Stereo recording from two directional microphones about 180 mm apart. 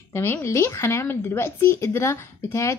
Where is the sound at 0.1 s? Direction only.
15° left (ahead or behind).